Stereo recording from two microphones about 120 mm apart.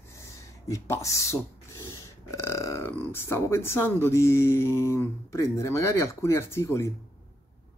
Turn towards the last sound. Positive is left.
turn(degrees=25)  # may be behind; listen again after turning